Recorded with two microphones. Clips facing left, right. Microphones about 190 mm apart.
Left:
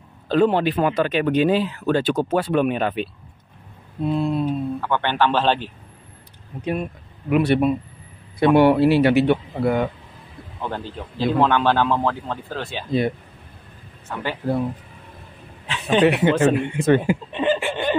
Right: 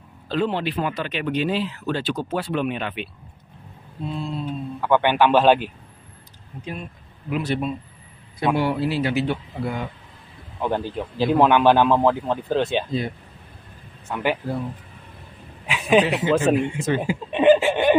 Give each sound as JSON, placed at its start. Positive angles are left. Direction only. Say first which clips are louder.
{"t": 0.3, "sound": "speech", "louder": "left 6 dB", "side_deg": 50}
{"t": 4.0, "sound": "speech", "louder": "left 8 dB", "side_deg": 60}
{"t": 4.8, "sound": "a man's voice", "louder": "right 5 dB", "side_deg": -10}
{"t": 6.6, "sound": "speech", "louder": "left 9 dB", "side_deg": 60}
{"t": 10.6, "sound": "a man's voice", "louder": "right 5 dB", "side_deg": -15}
{"t": 14.0, "sound": "a man's voice", "louder": "right 4 dB", "side_deg": -15}
{"t": 15.6, "sound": "a sound", "louder": "even", "side_deg": -10}
{"t": 16.1, "sound": "speech", "louder": "left 2 dB", "side_deg": 60}
{"t": 17.3, "sound": "a sound", "louder": "right 9 dB", "side_deg": -15}